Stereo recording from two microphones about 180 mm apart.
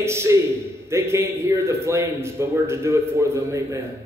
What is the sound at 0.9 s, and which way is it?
A man's voice, 15° right (ahead or behind).